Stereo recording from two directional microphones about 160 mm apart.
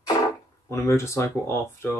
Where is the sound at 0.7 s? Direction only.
15° left (ahead or behind).